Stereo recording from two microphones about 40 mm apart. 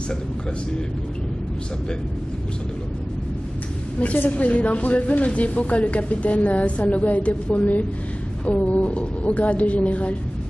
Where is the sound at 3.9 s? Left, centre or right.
Left.